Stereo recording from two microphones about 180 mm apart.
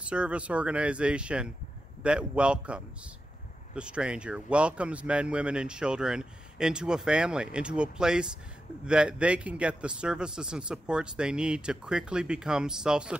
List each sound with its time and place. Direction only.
0.0 s speech: 5° right (ahead or behind)